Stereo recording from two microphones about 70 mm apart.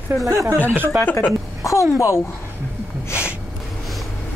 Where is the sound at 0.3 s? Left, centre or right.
Right.